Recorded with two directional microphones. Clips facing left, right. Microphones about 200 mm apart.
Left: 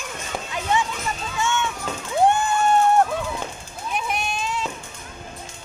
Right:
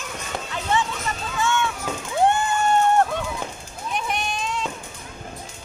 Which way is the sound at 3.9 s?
Centre (ahead or behind).